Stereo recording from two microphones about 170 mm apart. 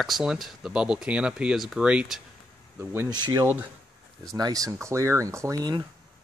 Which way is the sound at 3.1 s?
25° right (ahead or behind).